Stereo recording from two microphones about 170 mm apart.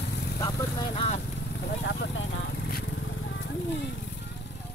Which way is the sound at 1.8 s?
90° left.